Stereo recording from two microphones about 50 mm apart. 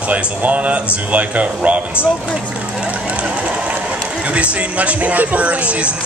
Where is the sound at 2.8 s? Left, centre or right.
Right.